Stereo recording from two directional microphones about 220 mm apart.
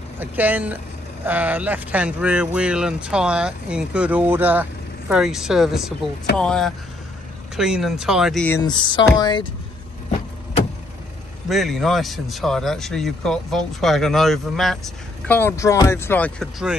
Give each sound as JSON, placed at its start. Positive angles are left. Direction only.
{"t": 0.2, "sound": "speech", "side_deg": -10}
{"t": 11.4, "sound": "speech", "side_deg": 0}